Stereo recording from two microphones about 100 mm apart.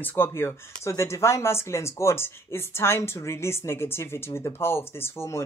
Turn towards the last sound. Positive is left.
turn(degrees=30)  # may be behind; listen again after turning